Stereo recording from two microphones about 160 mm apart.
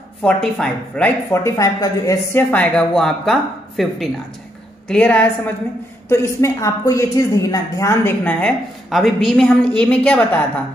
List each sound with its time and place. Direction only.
0.2 s a woman's voice: 5° left (ahead or behind)
1.3 s speech: 20° left (ahead or behind)
2.5 s a woman's voice: 5° left (ahead or behind)